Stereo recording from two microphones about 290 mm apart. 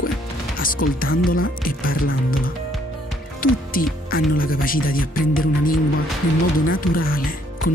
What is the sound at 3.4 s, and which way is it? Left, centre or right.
Speech, left.